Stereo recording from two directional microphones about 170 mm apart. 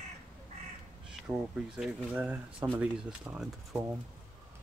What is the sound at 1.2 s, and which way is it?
Speech, 5° right (ahead or behind).